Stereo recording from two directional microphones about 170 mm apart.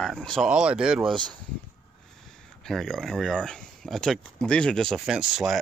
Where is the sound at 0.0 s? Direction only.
5° left (ahead or behind).